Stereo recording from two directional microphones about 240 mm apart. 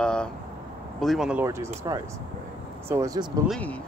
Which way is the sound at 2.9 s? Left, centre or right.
Centre.